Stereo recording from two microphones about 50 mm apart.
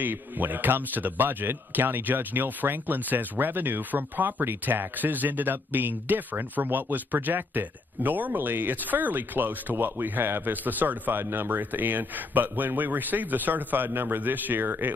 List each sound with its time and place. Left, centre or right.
0.0 s speech: right